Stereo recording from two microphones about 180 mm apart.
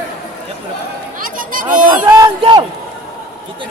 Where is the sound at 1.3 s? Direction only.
50° right (ahead or behind).